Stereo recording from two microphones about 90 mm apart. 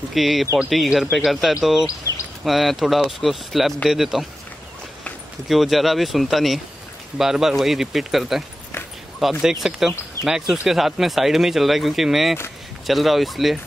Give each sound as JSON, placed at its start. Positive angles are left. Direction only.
{"t": 0.1, "sound": "speech", "side_deg": 0}
{"t": 1.9, "sound": "a sound", "side_deg": 40}
{"t": 2.4, "sound": "speech", "side_deg": 0}
{"t": 5.5, "sound": "speech", "side_deg": 0}